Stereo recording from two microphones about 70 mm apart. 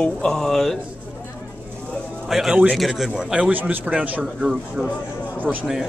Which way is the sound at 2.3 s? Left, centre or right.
Centre.